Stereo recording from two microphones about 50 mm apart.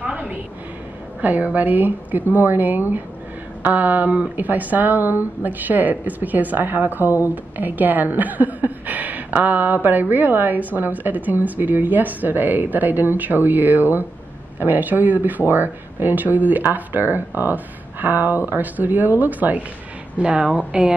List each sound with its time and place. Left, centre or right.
0.0 s a sound: right
1.2 s speech: right
20.2 s a woman's voice: right